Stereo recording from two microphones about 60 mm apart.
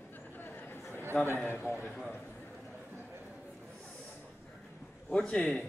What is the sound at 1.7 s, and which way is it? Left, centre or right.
Speech, left.